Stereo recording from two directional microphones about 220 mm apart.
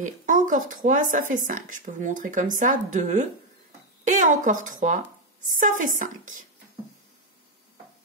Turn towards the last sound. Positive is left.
turn(degrees=-35)  # may be behind; listen again after turning